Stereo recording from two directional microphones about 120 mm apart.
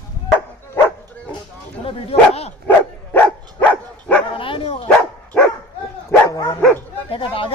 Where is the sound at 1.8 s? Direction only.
50° left (ahead or behind).